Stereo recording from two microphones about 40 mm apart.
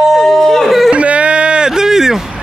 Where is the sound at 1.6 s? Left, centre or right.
Centre.